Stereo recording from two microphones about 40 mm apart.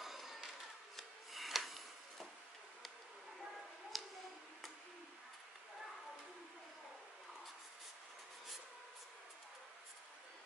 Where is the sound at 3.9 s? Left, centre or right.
Centre.